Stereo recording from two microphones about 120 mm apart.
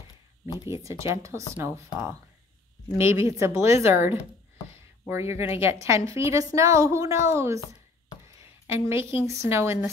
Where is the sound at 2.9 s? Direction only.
20° right (ahead or behind).